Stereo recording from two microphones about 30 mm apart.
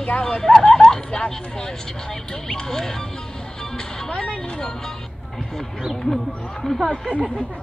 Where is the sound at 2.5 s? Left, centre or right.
Centre.